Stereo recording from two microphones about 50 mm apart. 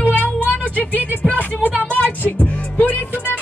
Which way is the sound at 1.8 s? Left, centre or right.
Left.